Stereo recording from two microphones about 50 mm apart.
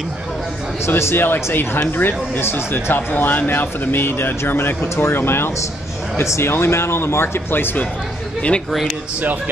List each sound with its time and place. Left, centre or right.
0.8 s speech: left
1.2 s speech: left
6.1 s speech: left